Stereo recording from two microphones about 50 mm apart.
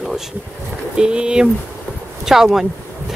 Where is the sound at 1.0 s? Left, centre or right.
Centre.